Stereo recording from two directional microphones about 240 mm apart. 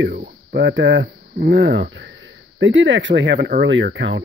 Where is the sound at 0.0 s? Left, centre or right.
Right.